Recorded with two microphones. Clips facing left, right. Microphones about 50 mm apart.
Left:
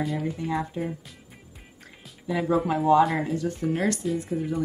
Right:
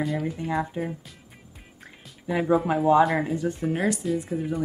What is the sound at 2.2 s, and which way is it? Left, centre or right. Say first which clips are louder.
Speech: right 2 dB; right.